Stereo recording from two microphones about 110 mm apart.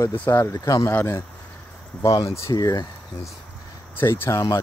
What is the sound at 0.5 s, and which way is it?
Speech, 30° left (ahead or behind).